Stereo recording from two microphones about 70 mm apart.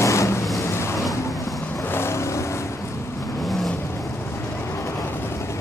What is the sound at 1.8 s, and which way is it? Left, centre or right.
Vehicle, left.